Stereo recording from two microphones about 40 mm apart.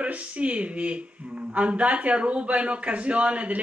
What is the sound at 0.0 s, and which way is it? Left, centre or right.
Speech, right.